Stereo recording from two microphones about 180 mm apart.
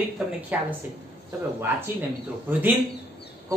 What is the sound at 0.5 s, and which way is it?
Speech, 5° right (ahead or behind).